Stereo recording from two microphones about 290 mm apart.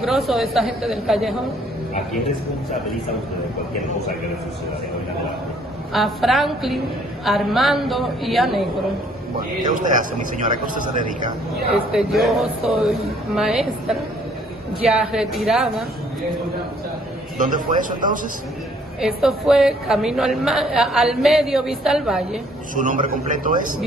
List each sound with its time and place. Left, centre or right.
0.0 s a woman's voice: centre
5.9 s a woman's voice: centre
9.7 s a man's voice: right
11.5 s a woman's voice: centre
17.4 s a man's voice: right
18.9 s a woman's voice: centre
22.8 s a man's voice: right